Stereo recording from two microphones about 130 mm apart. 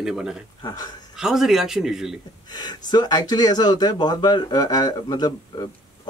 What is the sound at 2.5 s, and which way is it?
Speech, 30° left (ahead or behind).